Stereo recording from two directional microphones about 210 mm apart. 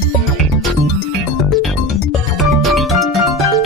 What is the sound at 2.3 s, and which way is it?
Music, centre (ahead or behind).